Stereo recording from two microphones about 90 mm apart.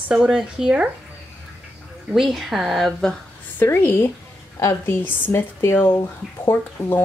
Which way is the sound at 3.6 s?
25° left (ahead or behind).